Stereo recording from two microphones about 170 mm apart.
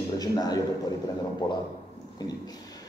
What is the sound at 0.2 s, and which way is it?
Speech, 25° left (ahead or behind).